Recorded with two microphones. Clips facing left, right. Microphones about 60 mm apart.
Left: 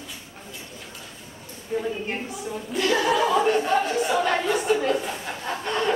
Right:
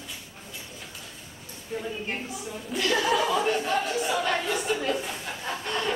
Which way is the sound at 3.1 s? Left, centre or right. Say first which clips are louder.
Left 4 dB; centre.